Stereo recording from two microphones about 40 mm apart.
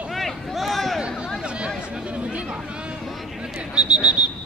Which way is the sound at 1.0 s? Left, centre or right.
Right.